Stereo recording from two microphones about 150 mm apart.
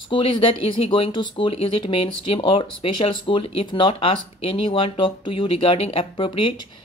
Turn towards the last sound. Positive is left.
turn(degrees=35)  # may be behind; listen again after turning